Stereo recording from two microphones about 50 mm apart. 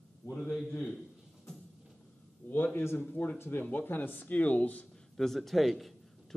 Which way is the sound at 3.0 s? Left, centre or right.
Left.